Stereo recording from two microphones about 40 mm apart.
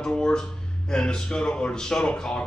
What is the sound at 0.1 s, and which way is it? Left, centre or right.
A man's voice, left.